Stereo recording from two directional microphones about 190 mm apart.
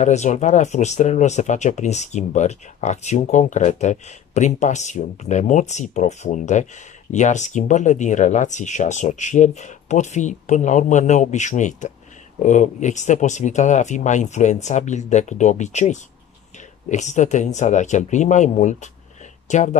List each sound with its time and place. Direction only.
0.0 s speech: 40° left (ahead or behind)